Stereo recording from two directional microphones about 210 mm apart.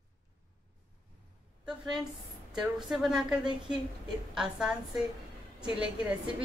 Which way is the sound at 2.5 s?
Centre (ahead or behind).